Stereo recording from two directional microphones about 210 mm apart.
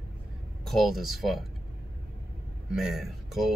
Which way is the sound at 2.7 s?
Centre (ahead or behind).